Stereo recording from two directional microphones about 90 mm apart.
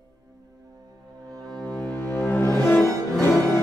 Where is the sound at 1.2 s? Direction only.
40° right (ahead or behind).